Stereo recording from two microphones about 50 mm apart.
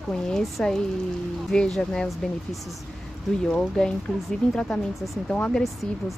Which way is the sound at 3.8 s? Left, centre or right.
Centre.